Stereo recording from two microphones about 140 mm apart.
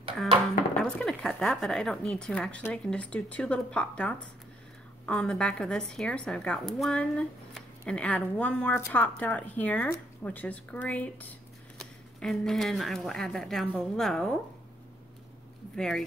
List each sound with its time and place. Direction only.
0.7 s a woman's voice: 5° left (ahead or behind)
15.7 s a woman's voice: 5° left (ahead or behind)